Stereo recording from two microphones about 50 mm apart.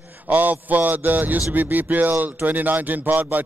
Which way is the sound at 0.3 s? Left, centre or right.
Right.